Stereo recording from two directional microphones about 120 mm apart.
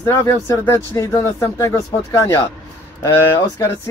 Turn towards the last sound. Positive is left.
turn(degrees=20)  # may be behind; listen again after turning